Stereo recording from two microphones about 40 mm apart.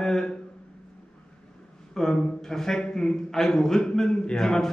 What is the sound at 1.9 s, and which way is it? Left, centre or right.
A man's voice, centre.